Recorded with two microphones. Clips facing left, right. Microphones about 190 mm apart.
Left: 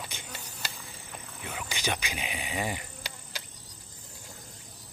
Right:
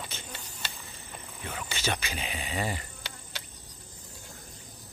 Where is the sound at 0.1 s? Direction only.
10° left (ahead or behind).